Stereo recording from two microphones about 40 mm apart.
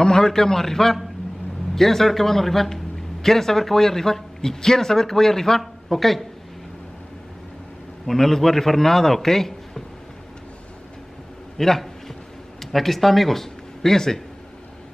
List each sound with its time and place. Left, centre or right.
0.0 s a man's voice: centre
8.1 s a man's voice: centre
11.5 s a man's voice: centre